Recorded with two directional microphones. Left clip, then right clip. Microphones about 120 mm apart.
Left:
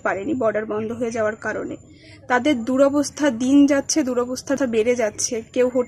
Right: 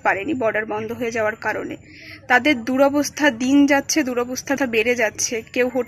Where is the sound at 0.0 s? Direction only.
30° left (ahead or behind).